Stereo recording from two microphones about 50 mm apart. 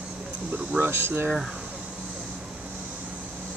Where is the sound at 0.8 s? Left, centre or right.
Right.